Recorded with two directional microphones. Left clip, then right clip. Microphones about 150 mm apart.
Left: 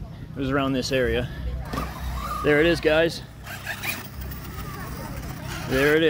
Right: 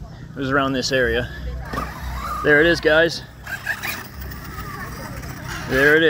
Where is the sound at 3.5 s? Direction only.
20° left (ahead or behind).